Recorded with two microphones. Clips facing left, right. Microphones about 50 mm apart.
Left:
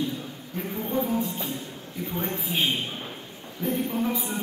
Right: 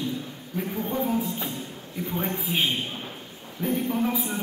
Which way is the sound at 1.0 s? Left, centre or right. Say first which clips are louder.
Right 1 dB; centre.